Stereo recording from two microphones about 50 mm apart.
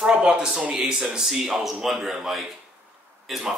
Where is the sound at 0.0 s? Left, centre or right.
Right.